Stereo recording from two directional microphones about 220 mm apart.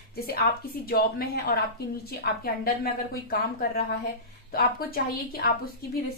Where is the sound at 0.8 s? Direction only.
45° left (ahead or behind).